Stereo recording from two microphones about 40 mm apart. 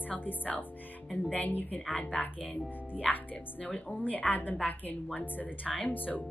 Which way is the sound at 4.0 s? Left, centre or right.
Left.